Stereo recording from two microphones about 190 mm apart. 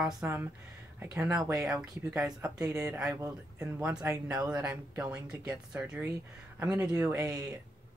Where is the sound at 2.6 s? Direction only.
15° right (ahead or behind).